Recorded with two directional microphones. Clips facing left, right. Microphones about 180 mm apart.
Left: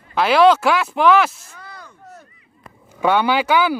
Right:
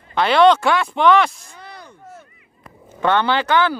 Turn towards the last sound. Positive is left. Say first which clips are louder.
# left 1 dB
turn(degrees=10)  # may be behind; listen again after turning